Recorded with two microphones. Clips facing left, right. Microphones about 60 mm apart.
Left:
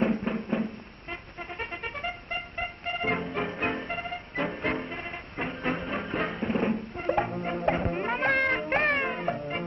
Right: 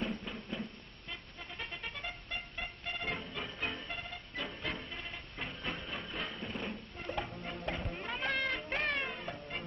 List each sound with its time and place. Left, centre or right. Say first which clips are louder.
0.0 s music: left 12 dB; left